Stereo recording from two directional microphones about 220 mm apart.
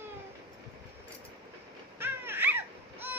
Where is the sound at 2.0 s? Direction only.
10° right (ahead or behind).